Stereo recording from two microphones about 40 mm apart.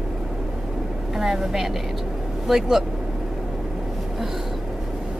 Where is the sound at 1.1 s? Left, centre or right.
Centre.